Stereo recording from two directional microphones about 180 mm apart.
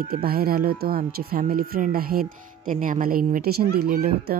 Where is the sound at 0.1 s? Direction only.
60° right (ahead or behind).